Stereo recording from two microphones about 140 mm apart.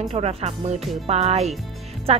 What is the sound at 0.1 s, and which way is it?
A woman's voice, 45° right (ahead or behind).